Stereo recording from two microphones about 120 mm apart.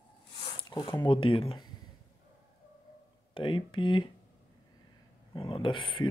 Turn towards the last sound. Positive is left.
turn(degrees=45)  # may be behind; listen again after turning